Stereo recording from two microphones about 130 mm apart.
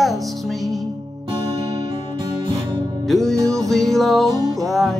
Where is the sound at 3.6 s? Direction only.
Centre (ahead or behind).